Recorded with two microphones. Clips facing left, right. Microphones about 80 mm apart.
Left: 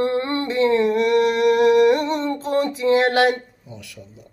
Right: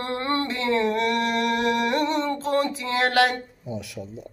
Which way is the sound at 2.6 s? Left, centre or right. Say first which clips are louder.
Left 7 dB; left.